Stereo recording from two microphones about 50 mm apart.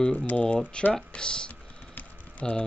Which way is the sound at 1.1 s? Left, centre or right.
Centre.